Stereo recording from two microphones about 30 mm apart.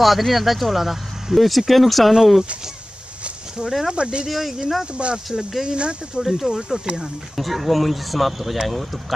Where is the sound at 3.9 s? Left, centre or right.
Right.